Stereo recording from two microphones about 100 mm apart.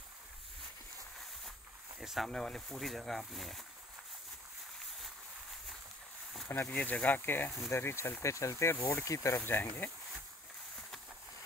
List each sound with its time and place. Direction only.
2.0 s speech: centre (ahead or behind)
6.5 s speech: 25° left (ahead or behind)